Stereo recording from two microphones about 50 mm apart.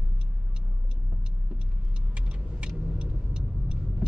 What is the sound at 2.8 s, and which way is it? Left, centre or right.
Vehicle, centre.